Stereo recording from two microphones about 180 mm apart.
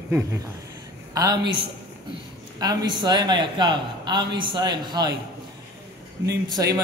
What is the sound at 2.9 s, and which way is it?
A man's voice, 25° right (ahead or behind).